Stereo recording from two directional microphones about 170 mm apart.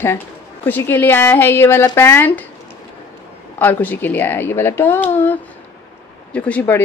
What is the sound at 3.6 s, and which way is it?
A woman's voice, 10° left (ahead or behind).